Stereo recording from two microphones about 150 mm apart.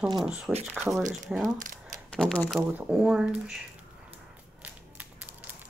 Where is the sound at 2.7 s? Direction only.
5° right (ahead or behind).